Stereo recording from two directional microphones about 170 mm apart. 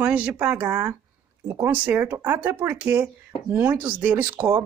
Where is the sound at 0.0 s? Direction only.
10° right (ahead or behind).